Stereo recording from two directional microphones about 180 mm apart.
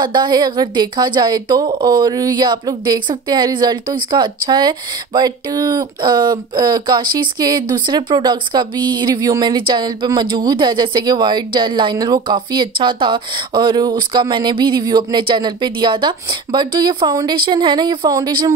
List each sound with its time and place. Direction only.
0.0 s a woman's voice: 25° right (ahead or behind)